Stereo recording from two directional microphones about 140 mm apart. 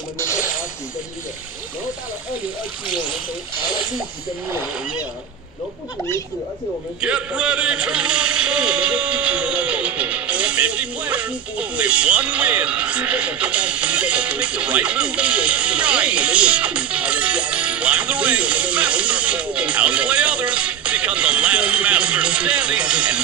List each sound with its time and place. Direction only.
7.0 s speech: 5° right (ahead or behind)